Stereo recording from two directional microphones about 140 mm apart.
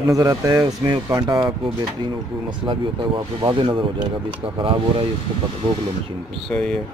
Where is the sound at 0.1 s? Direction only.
25° right (ahead or behind).